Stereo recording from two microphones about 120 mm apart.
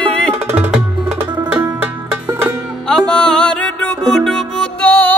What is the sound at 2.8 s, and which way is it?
Music, 5° left (ahead or behind).